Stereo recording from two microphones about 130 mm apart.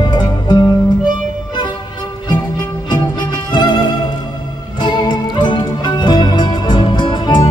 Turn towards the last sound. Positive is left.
turn(degrees=40)  # may be behind; listen again after turning